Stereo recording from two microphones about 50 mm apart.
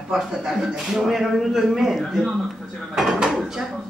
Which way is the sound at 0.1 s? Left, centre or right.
Centre.